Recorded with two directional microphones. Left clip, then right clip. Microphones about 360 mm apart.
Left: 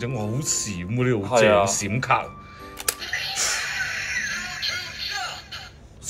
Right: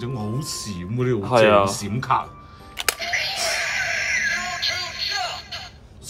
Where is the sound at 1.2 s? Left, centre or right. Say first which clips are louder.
Right 2 dB; right.